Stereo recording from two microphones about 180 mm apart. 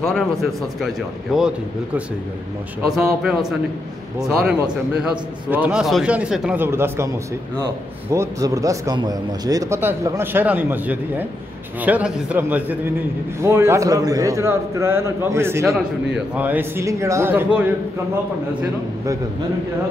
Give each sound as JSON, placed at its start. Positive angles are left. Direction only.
{"t": 0.0, "sound": "speech", "side_deg": 5}
{"t": 2.9, "sound": "speech", "side_deg": 0}
{"t": 5.5, "sound": "a man's voice", "side_deg": -5}